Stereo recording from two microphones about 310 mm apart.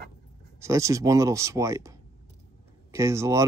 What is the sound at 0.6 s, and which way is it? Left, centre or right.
Speech, centre.